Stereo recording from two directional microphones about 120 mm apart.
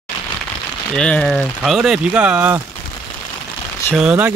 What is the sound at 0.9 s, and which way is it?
Speech, 10° left (ahead or behind).